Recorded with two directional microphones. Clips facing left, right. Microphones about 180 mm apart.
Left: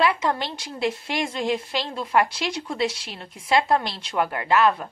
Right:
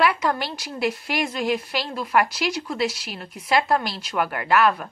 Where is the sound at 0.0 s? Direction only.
25° left (ahead or behind).